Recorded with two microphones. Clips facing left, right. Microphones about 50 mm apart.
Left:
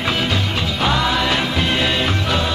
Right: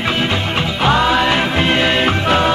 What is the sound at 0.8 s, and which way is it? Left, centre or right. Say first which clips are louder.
Music: right 5 dB; right.